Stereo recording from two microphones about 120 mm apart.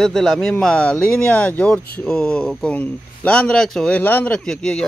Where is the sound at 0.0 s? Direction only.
5° left (ahead or behind).